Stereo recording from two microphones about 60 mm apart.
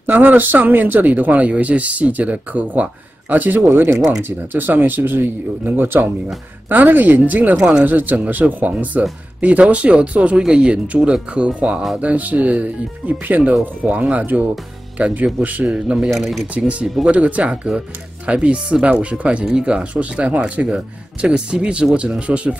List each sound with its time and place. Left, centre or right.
0.0 s speech: right
7.5 s speech: centre
7.8 s speech: right
16.1 s speech: centre
16.5 s speech: right